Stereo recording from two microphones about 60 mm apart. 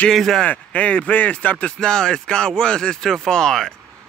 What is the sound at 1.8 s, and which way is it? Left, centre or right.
Speech, centre.